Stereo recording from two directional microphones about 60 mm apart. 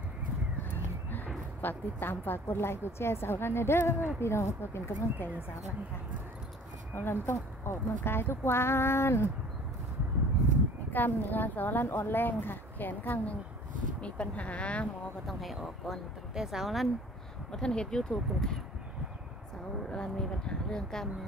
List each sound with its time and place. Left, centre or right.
1.6 s a woman's voice: left
7.0 s speech: left
10.9 s a woman's voice: left
15.2 s speech: centre
17.5 s speech: centre
19.9 s speech: centre